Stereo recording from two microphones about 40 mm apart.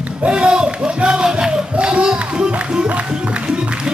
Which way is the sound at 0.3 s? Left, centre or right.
Right.